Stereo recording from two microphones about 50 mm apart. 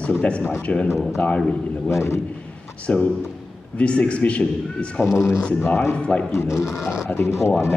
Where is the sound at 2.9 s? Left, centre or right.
Left.